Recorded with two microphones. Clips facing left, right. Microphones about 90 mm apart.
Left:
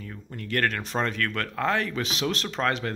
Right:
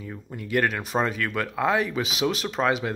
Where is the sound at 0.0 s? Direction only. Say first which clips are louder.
Right 2 dB; 10° right (ahead or behind).